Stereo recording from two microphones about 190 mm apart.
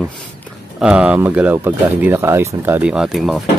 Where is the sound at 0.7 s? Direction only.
5° right (ahead or behind).